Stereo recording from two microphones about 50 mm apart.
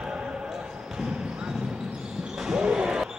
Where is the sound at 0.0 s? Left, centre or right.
Centre.